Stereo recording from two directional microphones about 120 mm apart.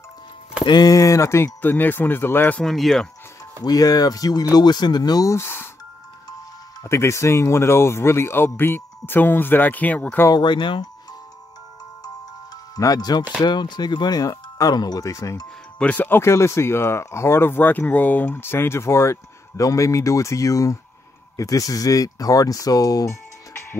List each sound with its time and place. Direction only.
0.7 s speech: 35° left (ahead or behind); by 2.6 s 15° left (ahead or behind)
2.6 s speech: centre (ahead or behind)
3.6 s speech: 30° left (ahead or behind)
6.8 s speech: 25° left (ahead or behind)
10.2 s speech: 35° left (ahead or behind)
12.7 s speech: 30° left (ahead or behind)
15.8 s speech: 15° left (ahead or behind); by 23.1 s 30° left (ahead or behind)